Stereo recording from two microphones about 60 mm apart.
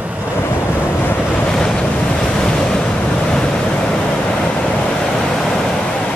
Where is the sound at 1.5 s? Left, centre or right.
Centre.